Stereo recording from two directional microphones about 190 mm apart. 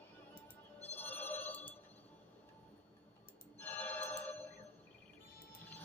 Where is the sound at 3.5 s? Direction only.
10° left (ahead or behind).